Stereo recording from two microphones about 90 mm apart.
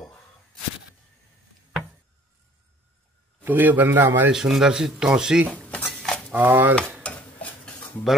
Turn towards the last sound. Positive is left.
turn(degrees=20)  # may be behind; listen again after turning